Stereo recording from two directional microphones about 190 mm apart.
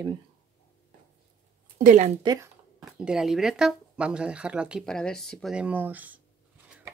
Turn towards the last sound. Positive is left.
turn(degrees=-10)  # may be behind; listen again after turning